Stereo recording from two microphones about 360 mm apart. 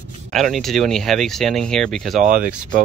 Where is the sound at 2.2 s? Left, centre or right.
Right.